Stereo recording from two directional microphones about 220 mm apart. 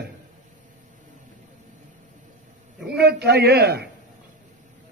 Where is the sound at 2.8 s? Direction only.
45° right (ahead or behind).